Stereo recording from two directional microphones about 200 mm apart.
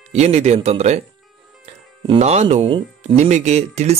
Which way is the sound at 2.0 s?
30° right (ahead or behind).